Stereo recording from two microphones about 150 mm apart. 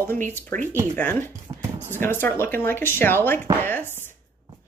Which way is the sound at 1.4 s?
15° right (ahead or behind).